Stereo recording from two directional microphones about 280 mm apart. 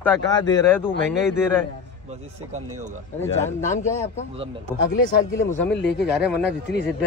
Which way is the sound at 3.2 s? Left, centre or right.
Centre.